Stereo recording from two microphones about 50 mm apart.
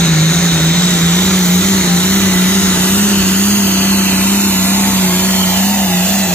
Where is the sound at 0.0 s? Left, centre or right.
Centre; by 6.1 s left.